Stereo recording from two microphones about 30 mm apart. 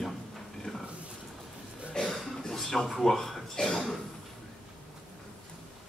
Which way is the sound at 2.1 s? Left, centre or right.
Centre.